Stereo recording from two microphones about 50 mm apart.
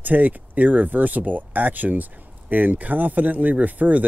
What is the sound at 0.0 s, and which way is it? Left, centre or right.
Speech, right.